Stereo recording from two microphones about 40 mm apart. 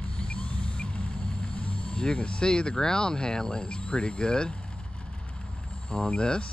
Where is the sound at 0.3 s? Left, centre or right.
Left.